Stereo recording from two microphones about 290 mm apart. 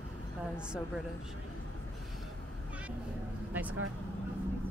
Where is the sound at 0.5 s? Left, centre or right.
Centre.